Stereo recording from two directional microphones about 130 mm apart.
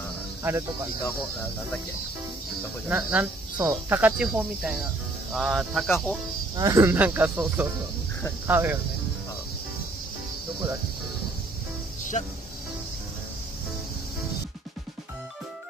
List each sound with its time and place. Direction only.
0.4 s speech: 20° right (ahead or behind)
2.9 s speech: 10° right (ahead or behind)
6.5 s speech: 25° right (ahead or behind)
12.0 s music: 75° left (ahead or behind)